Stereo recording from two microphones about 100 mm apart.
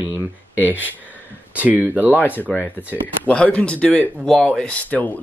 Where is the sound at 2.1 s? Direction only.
20° left (ahead or behind).